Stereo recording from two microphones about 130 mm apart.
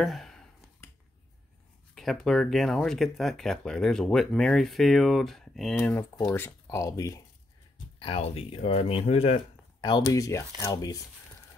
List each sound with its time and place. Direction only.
0.0 s clicking: centre (ahead or behind)
2.0 s speech: centre (ahead or behind)
5.8 s speech: 15° left (ahead or behind)
8.0 s speech: 45° left (ahead or behind)
9.8 s speech: 35° left (ahead or behind)